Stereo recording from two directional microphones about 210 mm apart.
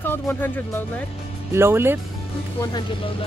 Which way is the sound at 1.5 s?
10° right (ahead or behind).